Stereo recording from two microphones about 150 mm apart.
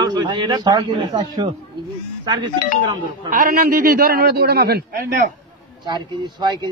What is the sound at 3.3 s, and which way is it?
A man's voice, 70° right (ahead or behind).